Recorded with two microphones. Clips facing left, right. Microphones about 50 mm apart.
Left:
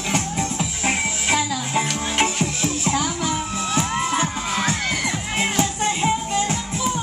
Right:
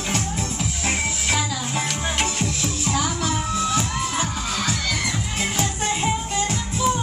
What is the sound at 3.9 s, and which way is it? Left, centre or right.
Crowd, left.